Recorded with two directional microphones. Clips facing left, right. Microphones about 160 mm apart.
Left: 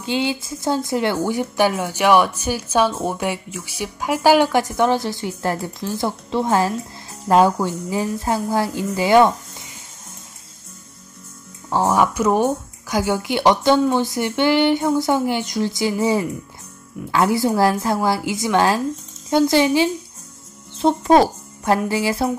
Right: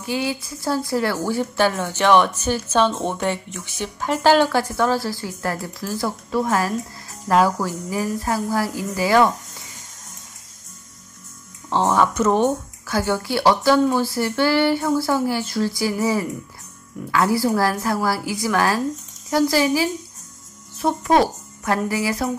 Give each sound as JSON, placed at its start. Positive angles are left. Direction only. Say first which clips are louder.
{"t": 0.0, "sound": "speech", "louder": "left 2 dB", "side_deg": 25}
{"t": 11.7, "sound": "speech", "louder": "left 1 dB", "side_deg": 10}